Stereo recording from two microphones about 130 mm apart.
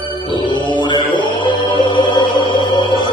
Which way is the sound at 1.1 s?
40° left (ahead or behind).